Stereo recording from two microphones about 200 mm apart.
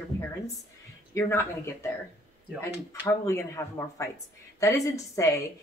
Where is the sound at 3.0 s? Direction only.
15° left (ahead or behind).